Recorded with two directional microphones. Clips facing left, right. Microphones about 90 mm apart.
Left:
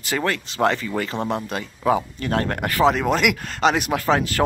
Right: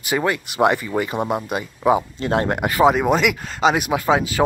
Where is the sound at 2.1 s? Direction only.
25° right (ahead or behind).